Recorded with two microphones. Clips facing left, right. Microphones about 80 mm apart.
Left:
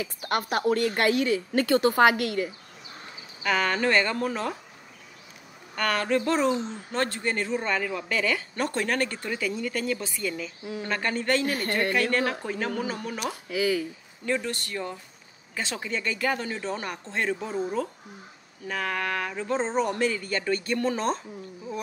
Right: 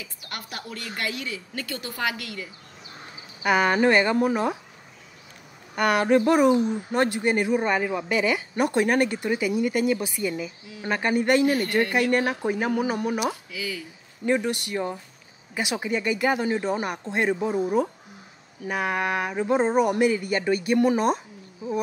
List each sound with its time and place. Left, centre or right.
0.0 s a woman's voice: left
3.4 s speech: centre
5.8 s speech: centre
13.5 s a woman's voice: left
14.2 s speech: centre
21.6 s a sound: centre